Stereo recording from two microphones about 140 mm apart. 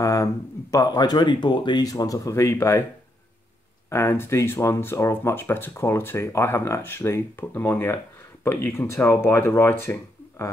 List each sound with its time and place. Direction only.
0.0 s speech: 25° left (ahead or behind)
3.9 s speech: 15° left (ahead or behind)